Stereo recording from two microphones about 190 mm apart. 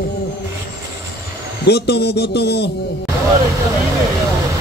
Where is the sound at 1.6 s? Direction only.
60° left (ahead or behind).